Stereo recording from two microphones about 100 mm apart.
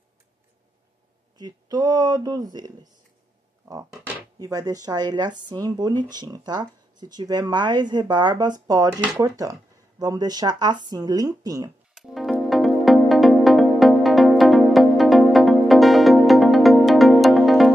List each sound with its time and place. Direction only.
1.4 s speech: 40° right (ahead or behind)
4.4 s speech: 40° right (ahead or behind)
11.9 s music: centre (ahead or behind)